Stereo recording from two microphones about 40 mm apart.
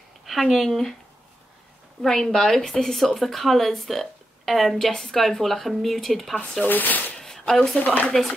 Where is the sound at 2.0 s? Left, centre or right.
Centre.